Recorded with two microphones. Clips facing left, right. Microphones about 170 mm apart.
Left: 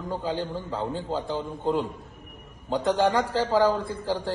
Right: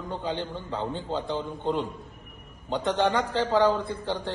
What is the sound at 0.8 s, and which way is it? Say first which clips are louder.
Speech: left 1 dB; 35° left (ahead or behind).